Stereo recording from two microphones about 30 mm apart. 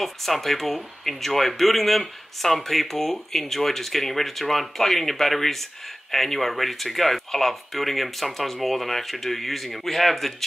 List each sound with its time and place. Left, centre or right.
0.0 s speech: centre